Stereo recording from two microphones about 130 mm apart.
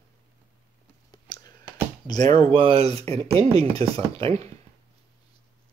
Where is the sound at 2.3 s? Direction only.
50° right (ahead or behind).